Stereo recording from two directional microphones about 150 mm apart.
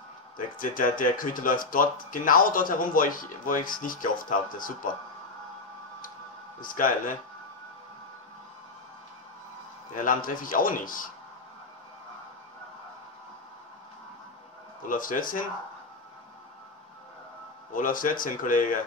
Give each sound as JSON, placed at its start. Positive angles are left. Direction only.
{"t": 0.6, "sound": "speech", "side_deg": 65}
{"t": 6.6, "sound": "a man's voice", "side_deg": 65}
{"t": 9.9, "sound": "a man's voice", "side_deg": 65}
{"t": 14.8, "sound": "speech", "side_deg": 65}
{"t": 17.7, "sound": "speech", "side_deg": 65}